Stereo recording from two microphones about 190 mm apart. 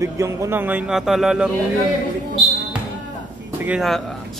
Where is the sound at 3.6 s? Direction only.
5° right (ahead or behind).